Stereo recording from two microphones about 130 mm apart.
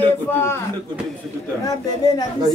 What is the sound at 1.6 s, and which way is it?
Speech, 30° left (ahead or behind).